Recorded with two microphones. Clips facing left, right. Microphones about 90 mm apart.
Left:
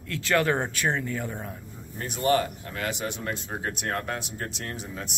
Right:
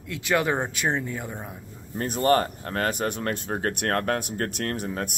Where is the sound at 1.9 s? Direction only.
45° right (ahead or behind).